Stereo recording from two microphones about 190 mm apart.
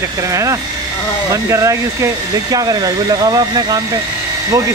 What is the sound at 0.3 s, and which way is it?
Speech, 15° right (ahead or behind).